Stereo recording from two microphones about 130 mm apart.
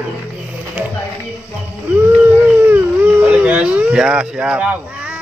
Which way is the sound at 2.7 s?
15° right (ahead or behind).